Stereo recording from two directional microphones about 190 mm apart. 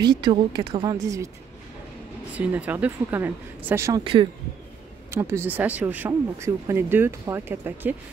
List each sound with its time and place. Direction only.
0.0 s a woman's voice: 25° right (ahead or behind)
2.3 s speech: 5° right (ahead or behind); by 4.3 s 25° right (ahead or behind)
5.1 s speech: 15° right (ahead or behind)